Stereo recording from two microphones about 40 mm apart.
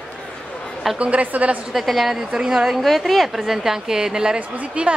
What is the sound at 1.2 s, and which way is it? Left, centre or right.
Speech, right.